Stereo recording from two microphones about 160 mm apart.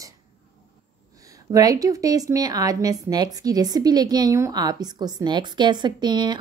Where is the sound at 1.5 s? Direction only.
20° right (ahead or behind).